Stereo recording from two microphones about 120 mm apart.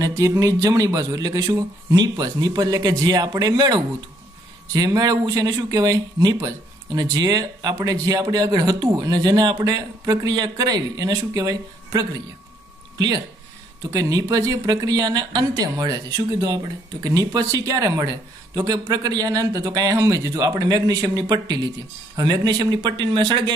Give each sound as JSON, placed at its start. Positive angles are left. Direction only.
{"t": 0.0, "sound": "speech", "side_deg": -25}